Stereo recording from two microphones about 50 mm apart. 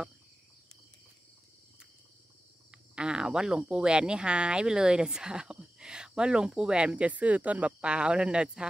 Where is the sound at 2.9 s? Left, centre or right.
Centre.